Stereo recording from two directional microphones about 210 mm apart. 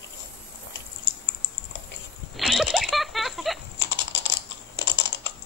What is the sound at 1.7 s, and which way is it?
Dog, 60° left (ahead or behind).